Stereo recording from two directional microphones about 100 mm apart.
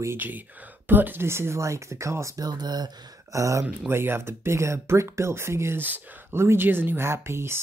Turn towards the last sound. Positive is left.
turn(degrees=-25)  # may be behind; listen again after turning